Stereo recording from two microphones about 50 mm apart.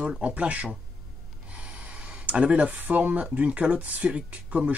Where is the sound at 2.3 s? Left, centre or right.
Right.